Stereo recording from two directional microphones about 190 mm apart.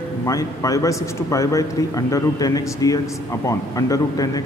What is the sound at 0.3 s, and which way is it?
A man's voice, 20° left (ahead or behind).